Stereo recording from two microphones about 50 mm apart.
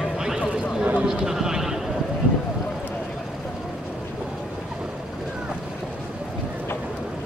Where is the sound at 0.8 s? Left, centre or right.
Right.